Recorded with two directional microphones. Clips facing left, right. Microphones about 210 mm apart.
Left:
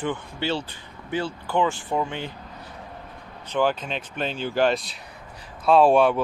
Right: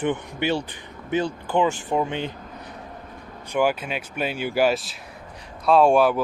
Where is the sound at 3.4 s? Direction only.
10° right (ahead or behind).